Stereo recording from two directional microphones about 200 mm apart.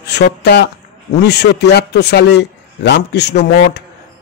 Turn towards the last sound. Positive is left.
turn(degrees=55)  # may be behind; listen again after turning